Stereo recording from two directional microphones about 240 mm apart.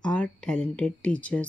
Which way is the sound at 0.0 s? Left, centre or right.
Centre.